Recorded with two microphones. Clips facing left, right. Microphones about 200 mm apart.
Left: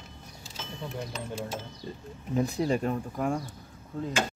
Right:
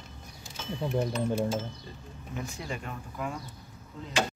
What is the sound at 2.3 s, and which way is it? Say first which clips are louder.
Speech: left 11 dB; 35° left (ahead or behind).